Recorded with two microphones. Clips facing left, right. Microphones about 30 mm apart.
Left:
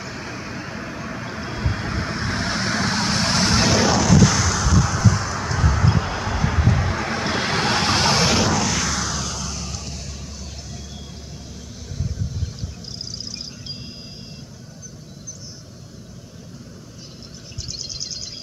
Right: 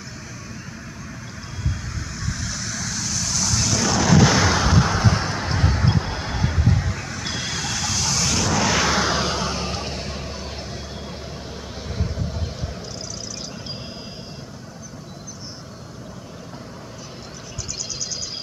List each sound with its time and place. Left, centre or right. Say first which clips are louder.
0.3 s vehicle: left 6 dB; left
4.0 s artillery fire: right 1 dB; centre; by 5.9 s right
5.9 s a sound: left 2 dB; left
6.4 s vehicle: left 1 dB; left
8.5 s artillery fire: right 2 dB; centre
8.8 s a sound: right 5 dB; right